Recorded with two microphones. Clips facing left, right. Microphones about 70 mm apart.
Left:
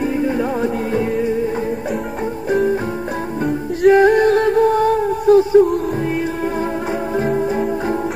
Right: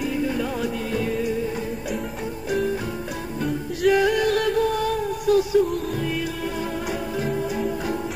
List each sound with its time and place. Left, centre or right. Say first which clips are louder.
0.0 s music: left 6 dB; left
2.5 s music: left 7 dB; left
7.2 s music: left 8 dB; left